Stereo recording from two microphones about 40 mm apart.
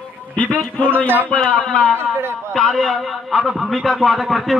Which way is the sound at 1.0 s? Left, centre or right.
Right.